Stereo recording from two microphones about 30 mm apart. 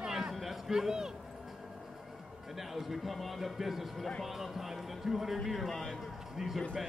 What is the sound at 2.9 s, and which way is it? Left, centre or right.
Speech, centre.